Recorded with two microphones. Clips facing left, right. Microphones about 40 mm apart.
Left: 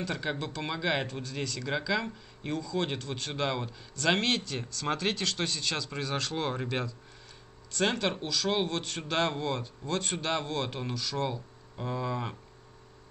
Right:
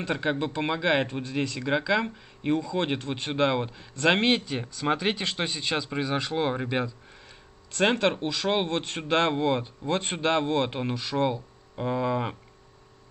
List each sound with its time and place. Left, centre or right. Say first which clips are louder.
0.0 s speech: right 6 dB; right